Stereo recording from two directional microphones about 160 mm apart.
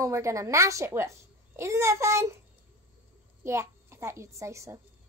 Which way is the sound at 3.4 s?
15° right (ahead or behind).